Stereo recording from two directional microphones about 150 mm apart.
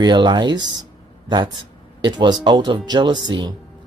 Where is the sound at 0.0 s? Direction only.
30° right (ahead or behind).